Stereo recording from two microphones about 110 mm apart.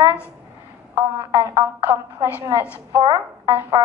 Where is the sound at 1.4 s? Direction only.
30° right (ahead or behind).